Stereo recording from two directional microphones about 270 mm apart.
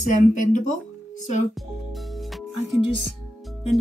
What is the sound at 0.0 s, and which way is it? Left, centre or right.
Speech, left.